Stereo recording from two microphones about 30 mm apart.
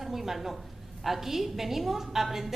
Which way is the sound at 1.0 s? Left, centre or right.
Centre.